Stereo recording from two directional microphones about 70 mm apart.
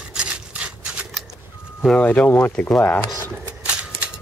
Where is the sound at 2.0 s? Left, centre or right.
Left.